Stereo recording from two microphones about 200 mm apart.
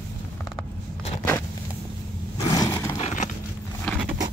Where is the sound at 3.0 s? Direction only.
35° left (ahead or behind).